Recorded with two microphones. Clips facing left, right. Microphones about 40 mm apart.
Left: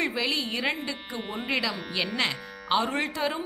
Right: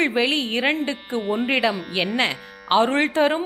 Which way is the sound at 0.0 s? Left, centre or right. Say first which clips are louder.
Right 7 dB; right.